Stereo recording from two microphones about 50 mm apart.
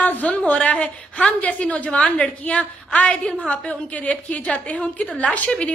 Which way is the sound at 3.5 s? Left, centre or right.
Left.